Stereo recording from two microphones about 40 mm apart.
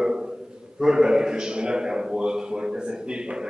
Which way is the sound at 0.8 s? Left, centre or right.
Centre.